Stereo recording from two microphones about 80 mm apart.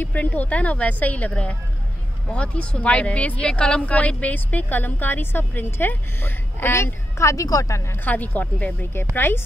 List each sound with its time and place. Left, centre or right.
0.0 s speech: centre; by 7.8 s left
8.0 s speech: left